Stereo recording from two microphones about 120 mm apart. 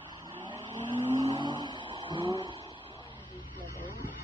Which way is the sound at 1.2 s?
40° right (ahead or behind).